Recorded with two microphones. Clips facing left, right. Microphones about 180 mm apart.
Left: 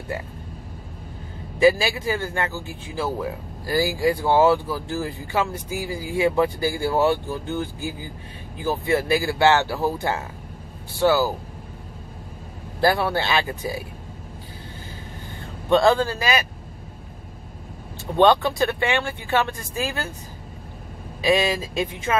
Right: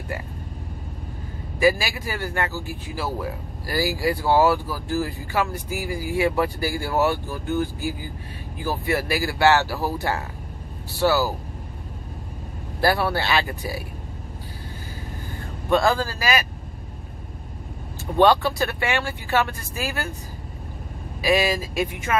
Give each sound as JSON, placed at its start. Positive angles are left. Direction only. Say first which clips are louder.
{"t": 1.6, "sound": "speech", "louder": "left 3 dB", "side_deg": 25}
{"t": 12.8, "sound": "speech", "louder": "left 1 dB", "side_deg": 20}
{"t": 15.7, "sound": "speech", "louder": "left 3 dB", "side_deg": 20}
{"t": 18.2, "sound": "speech", "louder": "left 1 dB", "side_deg": 20}
{"t": 21.2, "sound": "speech", "louder": "left 1 dB", "side_deg": 20}